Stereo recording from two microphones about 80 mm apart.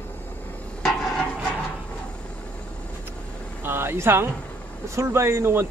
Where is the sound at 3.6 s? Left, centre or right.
Right.